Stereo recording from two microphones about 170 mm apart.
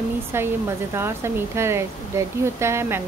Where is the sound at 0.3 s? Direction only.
15° right (ahead or behind).